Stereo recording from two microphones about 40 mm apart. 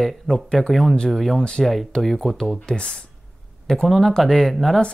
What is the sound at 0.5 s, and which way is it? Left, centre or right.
Speech, centre.